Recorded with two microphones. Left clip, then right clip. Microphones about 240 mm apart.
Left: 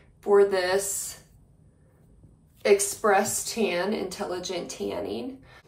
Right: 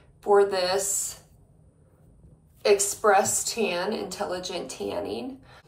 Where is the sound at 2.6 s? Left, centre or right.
Left.